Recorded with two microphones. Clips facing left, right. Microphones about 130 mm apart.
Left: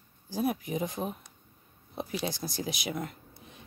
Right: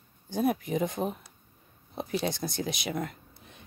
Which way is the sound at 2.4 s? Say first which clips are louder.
Right 2 dB; 55° right (ahead or behind).